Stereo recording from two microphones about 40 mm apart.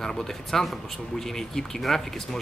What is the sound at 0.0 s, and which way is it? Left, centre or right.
Speech, centre.